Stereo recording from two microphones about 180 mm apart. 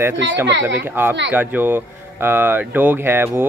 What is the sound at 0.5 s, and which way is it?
Speech, 90° right.